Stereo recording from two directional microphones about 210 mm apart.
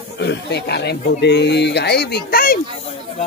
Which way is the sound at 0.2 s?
55° left (ahead or behind).